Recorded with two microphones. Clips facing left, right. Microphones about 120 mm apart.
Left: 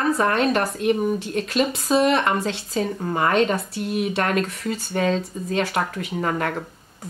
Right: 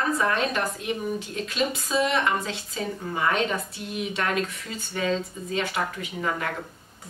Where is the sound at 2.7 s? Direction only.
50° left (ahead or behind).